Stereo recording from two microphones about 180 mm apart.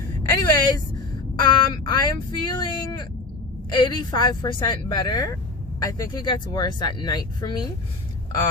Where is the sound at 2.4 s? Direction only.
25° left (ahead or behind).